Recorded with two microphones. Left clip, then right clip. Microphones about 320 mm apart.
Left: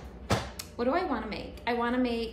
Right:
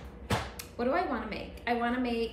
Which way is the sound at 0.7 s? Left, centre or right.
Centre.